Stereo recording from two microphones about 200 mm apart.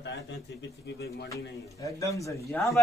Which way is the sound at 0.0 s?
60° left (ahead or behind).